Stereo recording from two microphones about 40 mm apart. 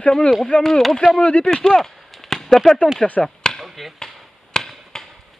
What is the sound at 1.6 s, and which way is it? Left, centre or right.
Speech, centre.